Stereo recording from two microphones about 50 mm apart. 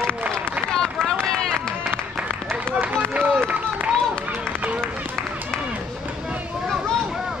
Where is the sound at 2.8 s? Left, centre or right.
Right.